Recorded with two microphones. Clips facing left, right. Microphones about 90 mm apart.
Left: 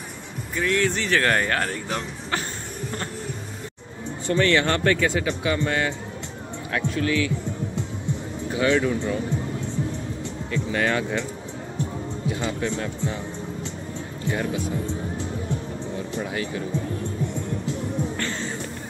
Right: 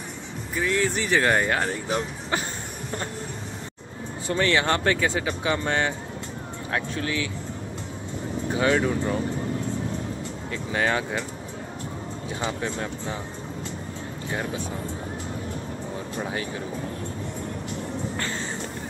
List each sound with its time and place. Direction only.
0.6 s speech: 10° right (ahead or behind)
4.3 s speech: 20° right (ahead or behind)
8.5 s speech: 35° right (ahead or behind)
10.5 s speech: 20° right (ahead or behind)
12.4 s speech: 20° right (ahead or behind)
16.2 s speech: 30° right (ahead or behind)